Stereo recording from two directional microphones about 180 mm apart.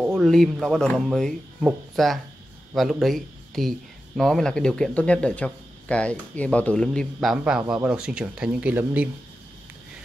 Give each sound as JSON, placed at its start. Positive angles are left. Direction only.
{"t": 0.1, "sound": "speech", "side_deg": 0}